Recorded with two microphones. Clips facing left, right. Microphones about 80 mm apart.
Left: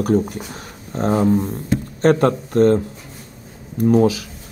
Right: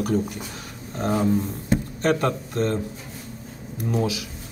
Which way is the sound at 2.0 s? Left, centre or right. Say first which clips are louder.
Left 8 dB; left.